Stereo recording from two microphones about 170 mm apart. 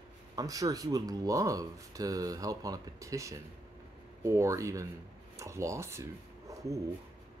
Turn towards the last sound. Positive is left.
turn(degrees=-20)  # may be behind; listen again after turning